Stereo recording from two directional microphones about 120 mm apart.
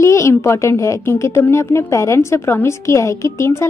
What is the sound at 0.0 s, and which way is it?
A woman's voice, 25° left (ahead or behind).